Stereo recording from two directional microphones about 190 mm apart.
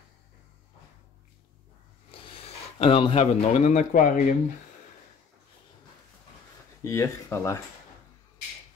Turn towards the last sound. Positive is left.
turn(degrees=15)  # may be behind; listen again after turning